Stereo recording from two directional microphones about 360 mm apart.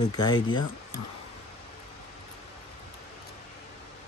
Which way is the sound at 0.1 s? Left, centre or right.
Centre.